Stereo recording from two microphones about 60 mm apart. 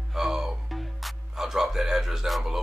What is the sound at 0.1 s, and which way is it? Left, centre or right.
Music, centre.